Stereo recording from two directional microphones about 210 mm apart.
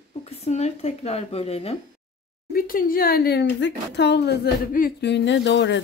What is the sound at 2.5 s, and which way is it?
Speech, 45° left (ahead or behind).